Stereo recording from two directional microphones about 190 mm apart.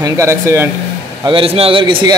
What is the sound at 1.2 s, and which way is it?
Speech, 30° right (ahead or behind).